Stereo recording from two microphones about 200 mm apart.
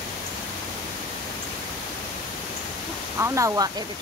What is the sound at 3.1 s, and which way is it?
Speech, 15° right (ahead or behind).